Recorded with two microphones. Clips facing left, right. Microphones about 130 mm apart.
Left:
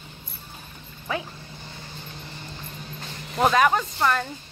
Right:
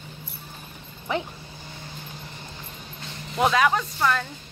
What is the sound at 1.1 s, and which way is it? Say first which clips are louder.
Speech: right 2 dB; 20° right (ahead or behind).